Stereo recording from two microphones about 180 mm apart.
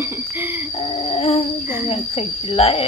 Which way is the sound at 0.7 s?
30° left (ahead or behind).